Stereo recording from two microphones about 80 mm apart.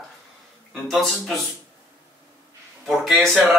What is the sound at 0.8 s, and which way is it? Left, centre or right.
Speech, centre.